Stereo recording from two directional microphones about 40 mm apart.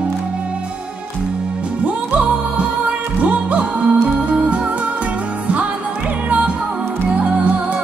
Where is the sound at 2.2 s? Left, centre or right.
Right.